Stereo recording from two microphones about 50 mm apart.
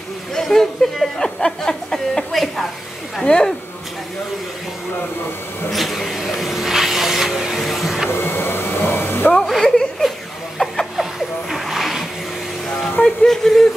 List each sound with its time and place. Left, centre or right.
0.3 s speech: centre
1.2 s speech: centre
5.7 s vehicle: centre
8.1 s vacuum cleaner: left
9.4 s a sound: centre
11.0 s vehicle: centre
12.6 s music: centre
13.0 s speech: centre